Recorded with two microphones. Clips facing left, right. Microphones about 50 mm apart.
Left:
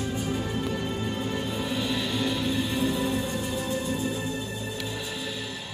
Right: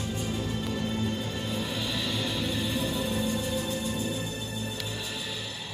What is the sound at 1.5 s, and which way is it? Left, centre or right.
Music, centre.